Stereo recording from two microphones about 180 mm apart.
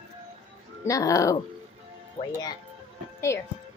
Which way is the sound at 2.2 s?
35° left (ahead or behind).